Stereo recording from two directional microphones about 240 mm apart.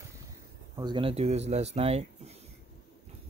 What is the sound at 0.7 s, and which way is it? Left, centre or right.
Speech, centre.